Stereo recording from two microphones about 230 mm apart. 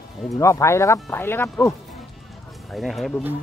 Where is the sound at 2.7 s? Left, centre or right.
Centre.